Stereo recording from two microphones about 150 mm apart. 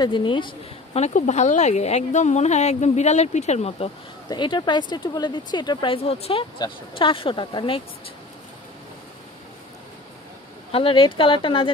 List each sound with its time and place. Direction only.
0.0 s speech: 35° left (ahead or behind)
1.0 s a woman's voice: 50° left (ahead or behind)
4.3 s speech: 30° left (ahead or behind)
10.7 s speech: 35° left (ahead or behind)